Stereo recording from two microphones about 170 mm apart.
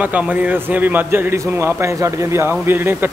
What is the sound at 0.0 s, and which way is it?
A man's voice, 10° right (ahead or behind).